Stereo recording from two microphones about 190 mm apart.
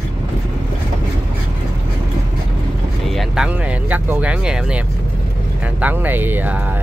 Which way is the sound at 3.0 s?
Centre (ahead or behind).